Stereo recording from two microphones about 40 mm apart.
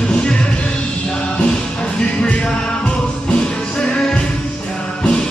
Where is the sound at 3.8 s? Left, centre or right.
Left.